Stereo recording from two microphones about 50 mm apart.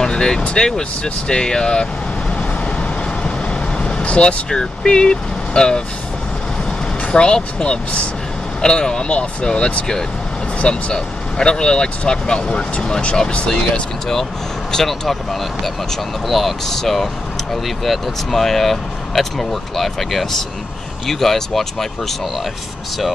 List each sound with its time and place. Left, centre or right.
0.0 s vehicle: centre
0.6 s speech: centre
3.3 s vehicle: centre
7.1 s speech: centre
14.7 s speech: centre
16.3 s speech: centre